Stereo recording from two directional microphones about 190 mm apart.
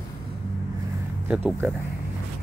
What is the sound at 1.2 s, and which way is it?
Speech, 5° right (ahead or behind).